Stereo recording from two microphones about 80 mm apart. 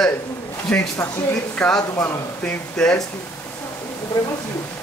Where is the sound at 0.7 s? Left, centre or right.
Left.